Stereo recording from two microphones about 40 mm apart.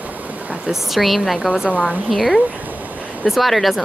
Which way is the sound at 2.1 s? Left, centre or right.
Centre.